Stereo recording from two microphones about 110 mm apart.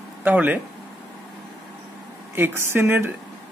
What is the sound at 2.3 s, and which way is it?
Speech, 20° right (ahead or behind).